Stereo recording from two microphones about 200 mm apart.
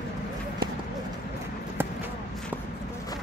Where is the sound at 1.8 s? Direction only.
10° right (ahead or behind).